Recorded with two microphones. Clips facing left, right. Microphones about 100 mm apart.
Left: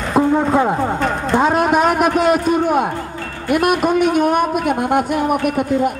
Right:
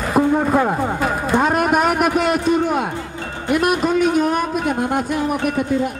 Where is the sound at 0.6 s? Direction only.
10° left (ahead or behind).